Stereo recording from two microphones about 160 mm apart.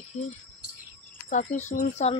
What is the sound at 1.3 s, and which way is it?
Speech, 45° left (ahead or behind).